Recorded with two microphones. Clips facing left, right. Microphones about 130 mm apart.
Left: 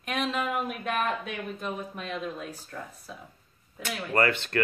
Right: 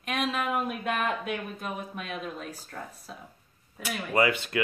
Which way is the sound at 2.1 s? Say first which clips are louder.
Left 3 dB; 10° right (ahead or behind).